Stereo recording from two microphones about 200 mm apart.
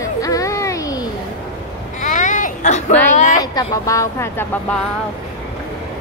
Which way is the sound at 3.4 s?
15° left (ahead or behind).